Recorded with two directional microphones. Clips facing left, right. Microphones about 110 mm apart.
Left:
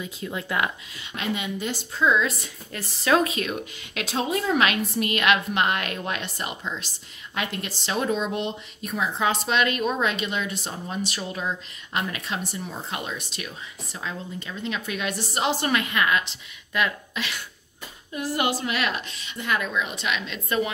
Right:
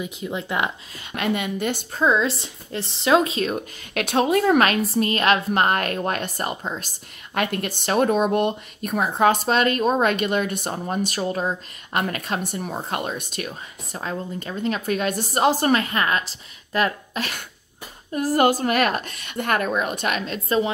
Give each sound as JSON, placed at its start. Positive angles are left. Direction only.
{"t": 0.0, "sound": "speech", "side_deg": -20}
{"t": 1.1, "sound": "a woman's voice", "side_deg": -55}
{"t": 2.0, "sound": "speech", "side_deg": -30}
{"t": 3.9, "sound": "speech", "side_deg": -60}
{"t": 7.3, "sound": "speech", "side_deg": -55}
{"t": 20.4, "sound": "a woman's voice", "side_deg": -30}